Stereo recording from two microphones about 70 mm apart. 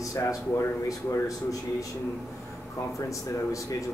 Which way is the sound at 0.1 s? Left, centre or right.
Left.